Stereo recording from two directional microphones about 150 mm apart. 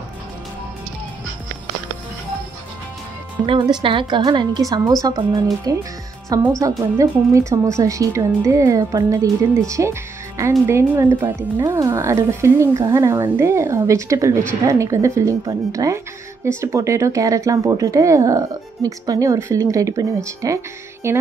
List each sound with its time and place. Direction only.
3.4 s speech: 35° right (ahead or behind)